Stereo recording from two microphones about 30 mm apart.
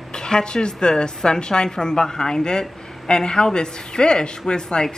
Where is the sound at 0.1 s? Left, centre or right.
Left.